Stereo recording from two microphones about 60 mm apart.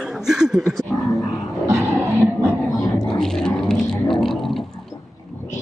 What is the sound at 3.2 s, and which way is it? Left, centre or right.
Didgeridoo, centre.